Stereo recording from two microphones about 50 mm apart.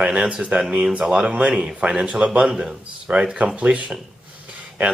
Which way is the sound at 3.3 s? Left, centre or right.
Right.